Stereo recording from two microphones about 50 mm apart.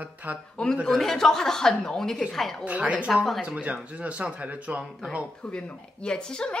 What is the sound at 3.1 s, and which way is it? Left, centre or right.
Speech, centre.